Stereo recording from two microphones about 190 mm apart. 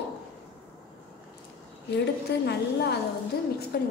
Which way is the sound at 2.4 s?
60° left (ahead or behind).